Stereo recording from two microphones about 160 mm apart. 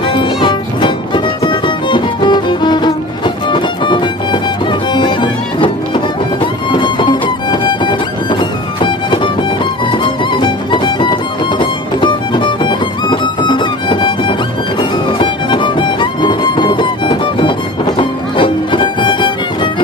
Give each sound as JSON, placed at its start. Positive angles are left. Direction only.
{"t": 0.0, "sound": "music", "side_deg": 30}